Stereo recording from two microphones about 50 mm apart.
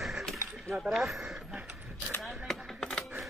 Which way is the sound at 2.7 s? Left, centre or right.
Centre.